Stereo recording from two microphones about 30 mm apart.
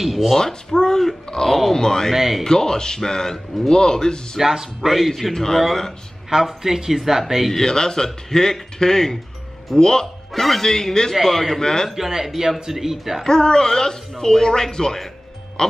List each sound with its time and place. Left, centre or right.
0.0 s speech: centre
0.4 s speech: centre
2.1 s speech: centre
2.4 s speech: centre
4.4 s speech: centre
4.9 s a man's voice: centre
5.3 s a man's voice: centre
6.3 s speech: centre
7.5 s speech: left
10.3 s a man's voice: centre
11.6 s a man's voice: centre
12.6 s speech: centre
13.2 s speech: left